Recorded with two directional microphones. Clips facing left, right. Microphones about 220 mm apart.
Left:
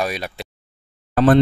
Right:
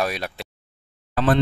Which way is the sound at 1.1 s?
45° left (ahead or behind).